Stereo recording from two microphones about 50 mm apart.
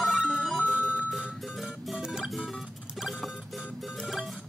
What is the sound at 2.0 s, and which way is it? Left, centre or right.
Music, centre.